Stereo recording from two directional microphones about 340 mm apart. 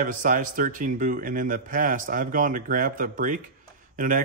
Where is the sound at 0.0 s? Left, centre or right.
Right.